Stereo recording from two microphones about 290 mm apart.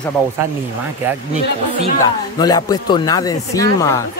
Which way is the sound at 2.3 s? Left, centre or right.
Centre.